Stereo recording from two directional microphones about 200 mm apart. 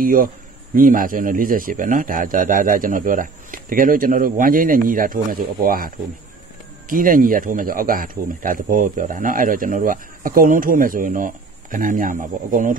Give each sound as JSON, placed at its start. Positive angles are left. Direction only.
{"t": 0.0, "sound": "speech", "side_deg": -45}